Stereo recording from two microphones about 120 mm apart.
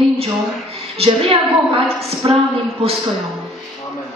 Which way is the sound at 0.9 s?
55° right (ahead or behind).